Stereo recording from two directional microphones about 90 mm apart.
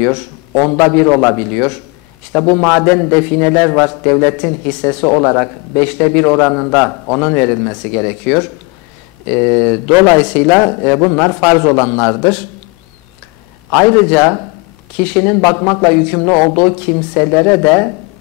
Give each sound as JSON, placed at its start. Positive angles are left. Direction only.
{"t": 0.0, "sound": "a man's voice", "side_deg": 15}
{"t": 13.7, "sound": "a man's voice", "side_deg": 10}